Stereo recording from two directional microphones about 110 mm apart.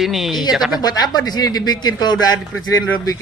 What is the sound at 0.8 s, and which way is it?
Speech, 40° left (ahead or behind).